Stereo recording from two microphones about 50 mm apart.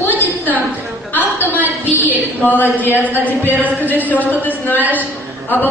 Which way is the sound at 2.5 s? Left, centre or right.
Left.